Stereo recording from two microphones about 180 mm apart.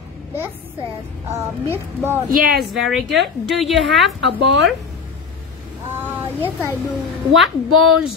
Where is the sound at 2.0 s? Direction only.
10° right (ahead or behind).